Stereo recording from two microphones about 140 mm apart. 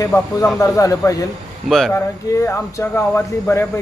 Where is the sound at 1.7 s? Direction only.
Centre (ahead or behind).